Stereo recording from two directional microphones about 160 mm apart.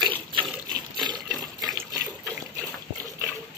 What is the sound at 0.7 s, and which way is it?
Water, 25° right (ahead or behind).